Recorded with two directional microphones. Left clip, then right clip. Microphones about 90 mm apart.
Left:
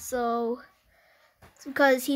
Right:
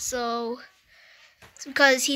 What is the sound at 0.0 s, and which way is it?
Speech, 45° left (ahead or behind).